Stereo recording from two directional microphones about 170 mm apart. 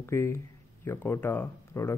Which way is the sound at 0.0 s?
15° left (ahead or behind).